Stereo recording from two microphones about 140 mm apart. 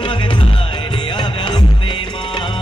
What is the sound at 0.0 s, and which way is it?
Music, 35° left (ahead or behind).